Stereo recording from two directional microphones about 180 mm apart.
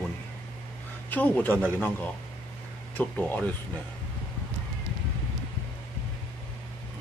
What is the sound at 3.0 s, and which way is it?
Speech, 10° left (ahead or behind).